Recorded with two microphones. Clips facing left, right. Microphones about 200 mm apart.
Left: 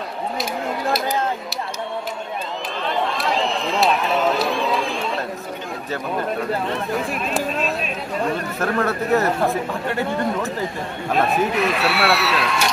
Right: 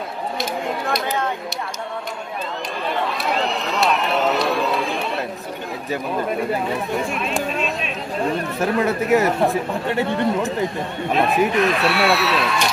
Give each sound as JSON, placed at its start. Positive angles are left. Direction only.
{"t": 2.9, "sound": "run", "side_deg": 0}
{"t": 5.9, "sound": "speech", "side_deg": -10}
{"t": 8.5, "sound": "speech", "side_deg": -15}
{"t": 11.1, "sound": "speech", "side_deg": 0}